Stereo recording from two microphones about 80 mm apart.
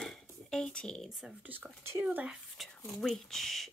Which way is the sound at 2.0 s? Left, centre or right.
Centre.